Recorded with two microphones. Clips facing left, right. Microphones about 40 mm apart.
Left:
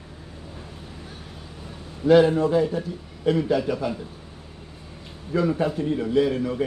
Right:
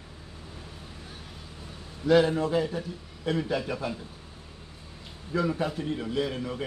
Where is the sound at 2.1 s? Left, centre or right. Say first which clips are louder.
Left 6 dB; centre.